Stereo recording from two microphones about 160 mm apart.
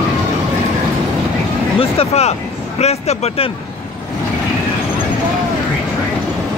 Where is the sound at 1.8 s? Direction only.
40° left (ahead or behind).